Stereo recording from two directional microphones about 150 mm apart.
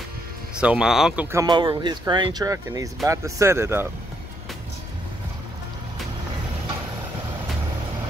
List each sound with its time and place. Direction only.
0.6 s speech: 5° right (ahead or behind)
1.2 s speech: 20° right (ahead or behind)
1.5 s speech: 30° right (ahead or behind); by 3.9 s 15° right (ahead or behind)